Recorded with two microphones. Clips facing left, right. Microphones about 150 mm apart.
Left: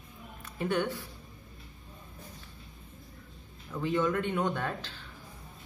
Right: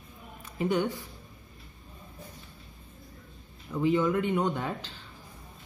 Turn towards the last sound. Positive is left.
turn(degrees=-15)  # may be behind; listen again after turning